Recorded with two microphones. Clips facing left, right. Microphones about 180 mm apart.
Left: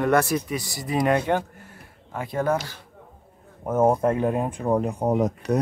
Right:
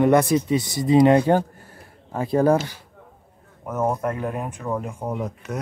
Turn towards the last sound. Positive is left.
turn(degrees=40)  # may be behind; listen again after turning